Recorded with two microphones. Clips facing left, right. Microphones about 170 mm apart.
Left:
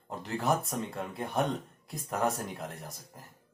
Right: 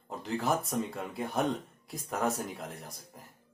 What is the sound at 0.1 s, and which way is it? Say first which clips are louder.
Speech: left 1 dB; centre (ahead or behind).